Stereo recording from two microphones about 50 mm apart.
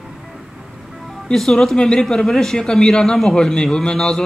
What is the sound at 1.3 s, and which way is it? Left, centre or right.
Speech, centre.